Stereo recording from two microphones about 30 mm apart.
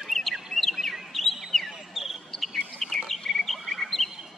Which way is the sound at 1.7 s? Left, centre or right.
Centre.